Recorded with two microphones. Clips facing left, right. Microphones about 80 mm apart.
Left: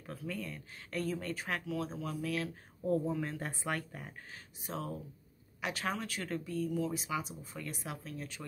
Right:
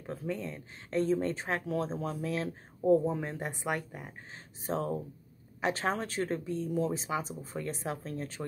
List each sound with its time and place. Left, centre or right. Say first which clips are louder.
0.0 s speech: right 5 dB; right
4.6 s speech: right 8 dB; right